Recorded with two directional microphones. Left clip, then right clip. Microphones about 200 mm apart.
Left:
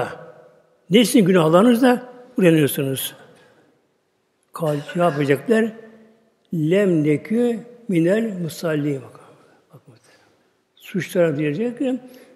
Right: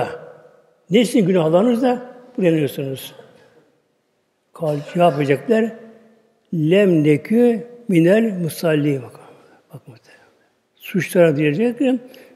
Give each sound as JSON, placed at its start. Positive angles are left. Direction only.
{"t": 0.8, "sound": "a man's voice", "side_deg": 15}
{"t": 4.6, "sound": "a man's voice", "side_deg": 0}